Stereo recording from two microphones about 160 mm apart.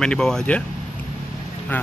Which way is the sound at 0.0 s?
5° left (ahead or behind).